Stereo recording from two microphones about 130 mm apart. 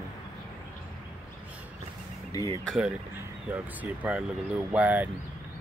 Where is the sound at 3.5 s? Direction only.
10° right (ahead or behind).